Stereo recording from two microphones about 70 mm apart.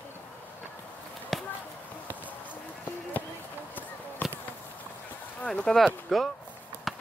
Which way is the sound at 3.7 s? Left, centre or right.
Left.